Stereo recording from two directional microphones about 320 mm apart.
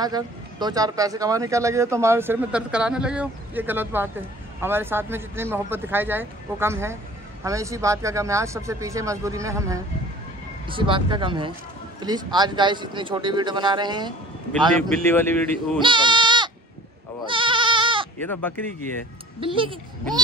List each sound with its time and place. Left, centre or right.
0.0 s speech: centre
15.1 s speech: centre
15.8 s goat: centre
19.4 s speech: centre